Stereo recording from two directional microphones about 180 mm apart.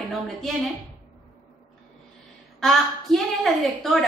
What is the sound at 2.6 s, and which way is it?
A woman's voice, centre (ahead or behind).